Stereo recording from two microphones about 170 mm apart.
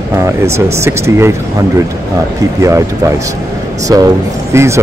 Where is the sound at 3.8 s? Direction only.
20° right (ahead or behind).